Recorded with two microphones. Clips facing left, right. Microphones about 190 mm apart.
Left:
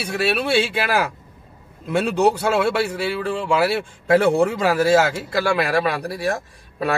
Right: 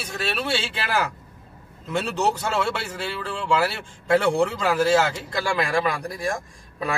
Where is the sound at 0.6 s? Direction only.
60° left (ahead or behind).